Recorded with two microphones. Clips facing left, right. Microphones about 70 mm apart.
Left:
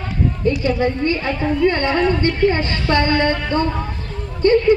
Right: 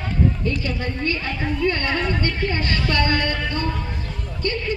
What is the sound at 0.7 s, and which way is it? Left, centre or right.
A woman's voice, left.